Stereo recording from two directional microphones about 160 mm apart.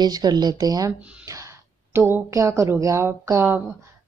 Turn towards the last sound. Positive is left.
turn(degrees=-15)  # may be behind; listen again after turning